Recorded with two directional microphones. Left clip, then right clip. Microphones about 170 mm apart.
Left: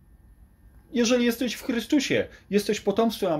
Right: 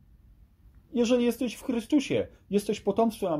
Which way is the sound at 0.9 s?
10° right (ahead or behind).